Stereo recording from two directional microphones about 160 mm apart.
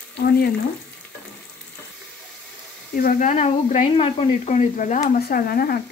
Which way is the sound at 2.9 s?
60° left (ahead or behind).